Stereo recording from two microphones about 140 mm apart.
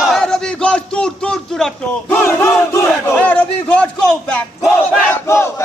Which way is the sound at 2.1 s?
20° left (ahead or behind).